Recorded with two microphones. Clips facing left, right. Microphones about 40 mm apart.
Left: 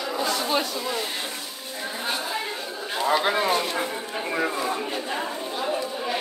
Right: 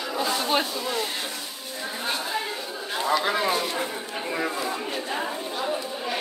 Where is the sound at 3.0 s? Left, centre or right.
Left.